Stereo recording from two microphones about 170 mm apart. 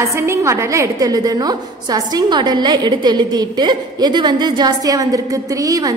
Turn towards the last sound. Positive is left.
turn(degrees=-20)  # may be behind; listen again after turning